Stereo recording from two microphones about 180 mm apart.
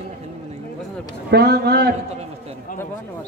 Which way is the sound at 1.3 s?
60° right (ahead or behind).